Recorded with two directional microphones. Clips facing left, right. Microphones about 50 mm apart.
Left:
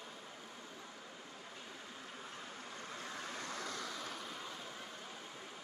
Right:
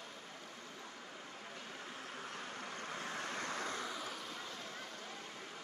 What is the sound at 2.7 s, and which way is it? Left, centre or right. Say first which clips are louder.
Vehicle: right 3 dB; right.